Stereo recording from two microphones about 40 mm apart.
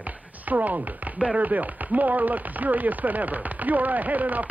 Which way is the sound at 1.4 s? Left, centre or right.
Right.